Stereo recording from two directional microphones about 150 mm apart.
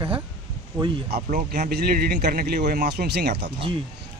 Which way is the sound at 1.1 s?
75° right (ahead or behind).